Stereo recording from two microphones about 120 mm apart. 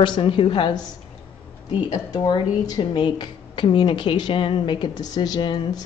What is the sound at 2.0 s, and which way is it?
A woman's voice, 40° left (ahead or behind).